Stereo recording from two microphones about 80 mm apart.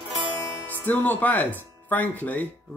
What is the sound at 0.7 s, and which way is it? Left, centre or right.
Speech, left.